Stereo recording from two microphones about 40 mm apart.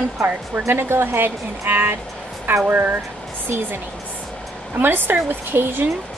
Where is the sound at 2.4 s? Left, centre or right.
Right.